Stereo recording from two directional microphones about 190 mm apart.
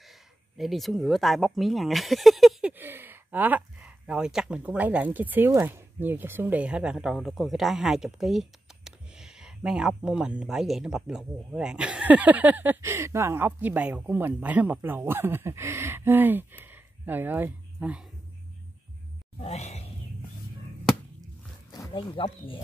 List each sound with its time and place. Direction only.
0.6 s speech: centre (ahead or behind)
2.8 s speech: 10° right (ahead or behind)
19.4 s speech: 35° left (ahead or behind)
21.7 s speech: 20° left (ahead or behind)